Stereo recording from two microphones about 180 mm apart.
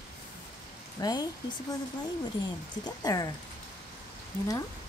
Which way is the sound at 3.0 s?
20° left (ahead or behind).